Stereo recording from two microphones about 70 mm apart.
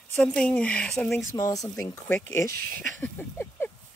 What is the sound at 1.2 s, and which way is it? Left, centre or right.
Speech, left.